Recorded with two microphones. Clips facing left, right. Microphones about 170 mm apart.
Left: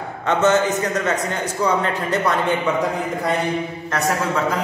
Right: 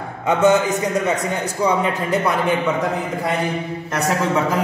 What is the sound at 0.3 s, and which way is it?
A man's voice, 10° right (ahead or behind).